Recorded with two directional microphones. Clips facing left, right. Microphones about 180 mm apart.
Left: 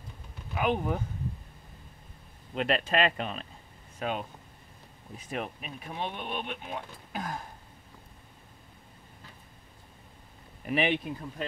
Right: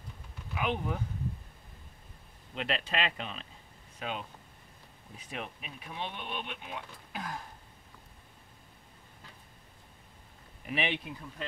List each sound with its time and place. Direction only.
0.6 s speech: 45° left (ahead or behind)
2.5 s speech: 45° left (ahead or behind)
5.3 s speech: 45° left (ahead or behind)
10.7 s speech: 45° left (ahead or behind)